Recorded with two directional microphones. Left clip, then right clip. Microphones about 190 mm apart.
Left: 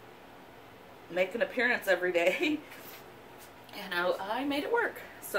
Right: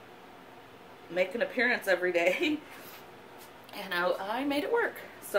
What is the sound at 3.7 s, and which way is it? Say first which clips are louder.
A woman's voice: right 1 dB; 35° right (ahead or behind).